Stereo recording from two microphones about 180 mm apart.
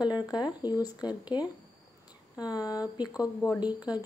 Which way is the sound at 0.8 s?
25° left (ahead or behind).